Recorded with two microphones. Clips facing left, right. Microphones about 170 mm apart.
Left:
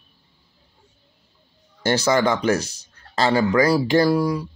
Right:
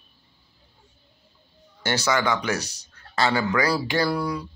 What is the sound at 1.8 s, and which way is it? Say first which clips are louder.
Speech: left 5 dB; 30° left (ahead or behind).